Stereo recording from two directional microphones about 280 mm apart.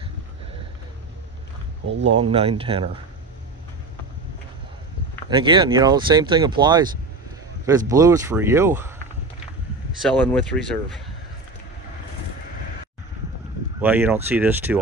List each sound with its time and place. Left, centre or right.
1.9 s speech: right
2.3 s speech: centre
5.3 s speech: centre
10.0 s speech: centre
13.7 s speech: centre